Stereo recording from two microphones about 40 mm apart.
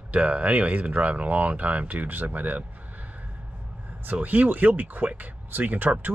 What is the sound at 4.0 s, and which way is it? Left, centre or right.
Speech, right.